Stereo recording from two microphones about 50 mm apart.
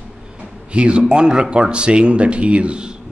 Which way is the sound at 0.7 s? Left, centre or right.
Right.